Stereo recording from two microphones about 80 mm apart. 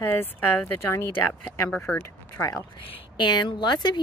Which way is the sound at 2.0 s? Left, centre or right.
Left.